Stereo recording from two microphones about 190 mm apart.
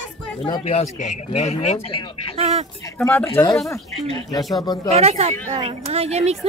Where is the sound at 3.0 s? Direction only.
10° left (ahead or behind).